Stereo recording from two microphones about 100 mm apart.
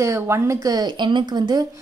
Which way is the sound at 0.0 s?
30° right (ahead or behind).